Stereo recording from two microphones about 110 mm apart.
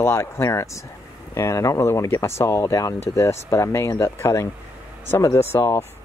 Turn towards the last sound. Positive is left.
turn(degrees=25)  # may be behind; listen again after turning